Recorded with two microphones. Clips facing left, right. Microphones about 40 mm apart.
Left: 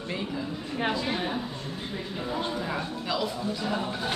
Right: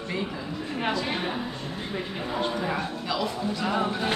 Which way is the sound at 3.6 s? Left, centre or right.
Right.